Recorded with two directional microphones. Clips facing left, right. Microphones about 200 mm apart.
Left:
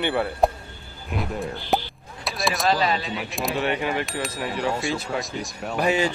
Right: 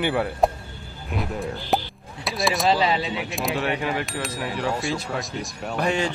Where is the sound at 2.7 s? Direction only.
20° right (ahead or behind).